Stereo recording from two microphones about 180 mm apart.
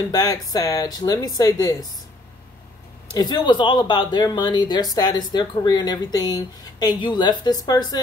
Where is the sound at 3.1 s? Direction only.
25° left (ahead or behind).